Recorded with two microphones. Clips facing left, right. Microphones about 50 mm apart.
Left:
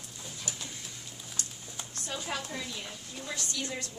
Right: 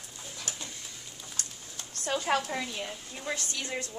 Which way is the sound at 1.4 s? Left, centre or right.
Right.